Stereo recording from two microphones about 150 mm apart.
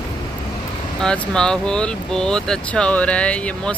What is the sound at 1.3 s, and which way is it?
Speech, 5° left (ahead or behind).